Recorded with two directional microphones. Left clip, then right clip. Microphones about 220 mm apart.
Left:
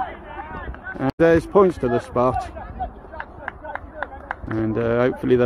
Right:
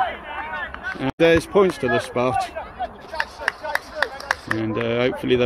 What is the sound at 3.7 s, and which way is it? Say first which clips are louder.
Run: right 7 dB; 45° right (ahead or behind).